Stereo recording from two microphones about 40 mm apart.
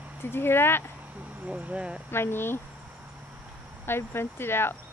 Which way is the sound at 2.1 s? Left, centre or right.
Left.